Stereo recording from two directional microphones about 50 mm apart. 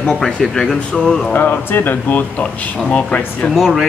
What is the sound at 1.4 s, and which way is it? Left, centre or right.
Speech, left.